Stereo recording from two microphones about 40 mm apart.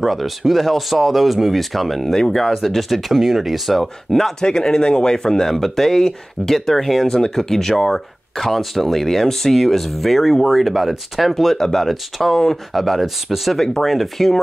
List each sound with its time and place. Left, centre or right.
0.0 s speech: centre
2.5 s speech: centre
4.5 s speech: centre